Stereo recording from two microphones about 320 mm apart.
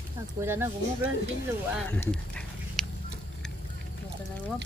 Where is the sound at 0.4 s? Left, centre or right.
Centre.